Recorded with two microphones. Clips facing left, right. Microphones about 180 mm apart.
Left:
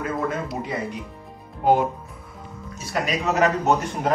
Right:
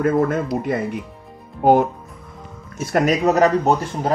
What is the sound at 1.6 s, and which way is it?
Speech, 45° right (ahead or behind).